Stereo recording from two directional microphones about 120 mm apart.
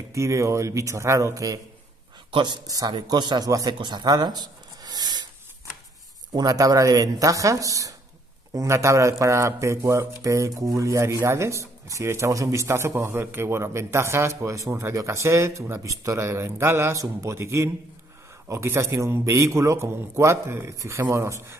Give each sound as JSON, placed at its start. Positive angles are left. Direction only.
{"t": 0.1, "sound": "a man's voice", "side_deg": -25}
{"t": 6.3, "sound": "speech", "side_deg": -30}